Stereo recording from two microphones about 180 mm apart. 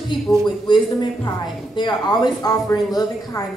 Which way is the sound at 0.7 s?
25° left (ahead or behind).